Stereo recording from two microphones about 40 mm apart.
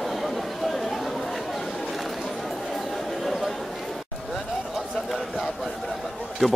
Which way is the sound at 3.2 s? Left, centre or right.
Centre.